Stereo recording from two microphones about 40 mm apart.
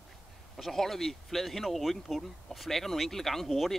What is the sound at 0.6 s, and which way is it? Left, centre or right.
Speech, centre.